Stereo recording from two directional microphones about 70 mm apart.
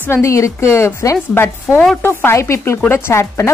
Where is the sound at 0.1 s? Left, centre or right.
Left.